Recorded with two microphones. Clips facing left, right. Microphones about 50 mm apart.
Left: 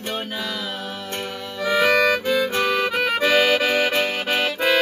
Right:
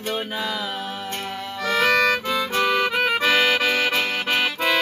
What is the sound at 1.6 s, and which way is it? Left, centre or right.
Harmonica, centre.